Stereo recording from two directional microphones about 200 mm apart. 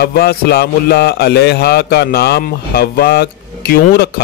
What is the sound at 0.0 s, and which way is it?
Speech, 50° left (ahead or behind).